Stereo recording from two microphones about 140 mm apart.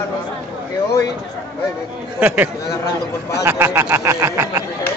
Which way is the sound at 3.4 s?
15° right (ahead or behind).